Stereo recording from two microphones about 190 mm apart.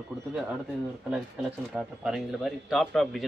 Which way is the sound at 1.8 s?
Centre (ahead or behind).